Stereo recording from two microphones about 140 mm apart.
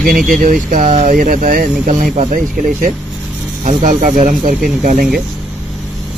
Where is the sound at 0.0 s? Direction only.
90° right; by 5.0 s 75° right (ahead or behind).